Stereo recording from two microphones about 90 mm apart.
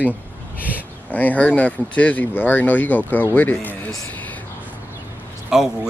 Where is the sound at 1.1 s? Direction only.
20° left (ahead or behind).